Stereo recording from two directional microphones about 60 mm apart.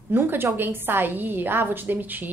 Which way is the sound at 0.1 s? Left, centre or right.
Right.